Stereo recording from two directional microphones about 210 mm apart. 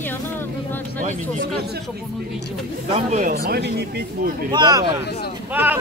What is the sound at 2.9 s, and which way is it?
Speech, 35° right (ahead or behind).